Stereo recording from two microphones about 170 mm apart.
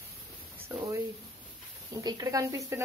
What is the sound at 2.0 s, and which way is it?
Speech, 20° right (ahead or behind).